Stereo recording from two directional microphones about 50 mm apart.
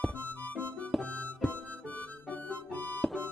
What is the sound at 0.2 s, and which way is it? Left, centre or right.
Music, left.